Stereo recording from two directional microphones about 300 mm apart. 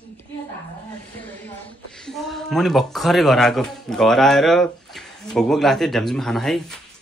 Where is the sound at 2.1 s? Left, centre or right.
Centre.